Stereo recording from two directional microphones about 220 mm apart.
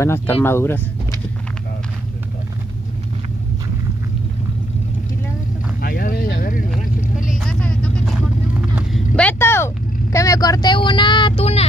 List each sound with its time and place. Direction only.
0.0 s speech: 10° left (ahead or behind)
5.8 s vehicle: 40° left (ahead or behind)
6.7 s vehicle: centre (ahead or behind)
8.7 s a sound: 5° left (ahead or behind)
10.1 s speech: 15° left (ahead or behind)